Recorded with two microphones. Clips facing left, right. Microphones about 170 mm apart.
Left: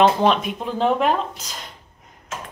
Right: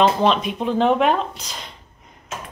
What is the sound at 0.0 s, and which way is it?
Speech, 10° left (ahead or behind).